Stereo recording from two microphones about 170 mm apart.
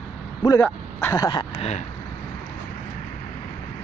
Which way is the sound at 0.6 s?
10° left (ahead or behind).